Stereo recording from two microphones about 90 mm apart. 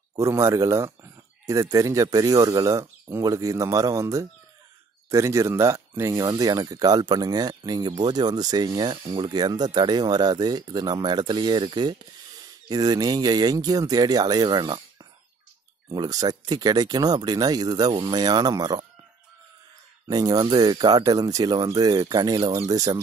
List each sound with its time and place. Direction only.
0.1 s speech: 35° right (ahead or behind)
6.2 s speech: 45° right (ahead or behind)
20.1 s speech: 45° right (ahead or behind)